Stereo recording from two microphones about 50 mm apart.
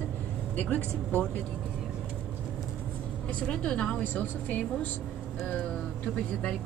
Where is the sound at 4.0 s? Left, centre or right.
Left.